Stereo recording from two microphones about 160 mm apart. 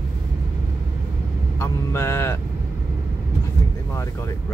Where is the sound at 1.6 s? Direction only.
15° left (ahead or behind).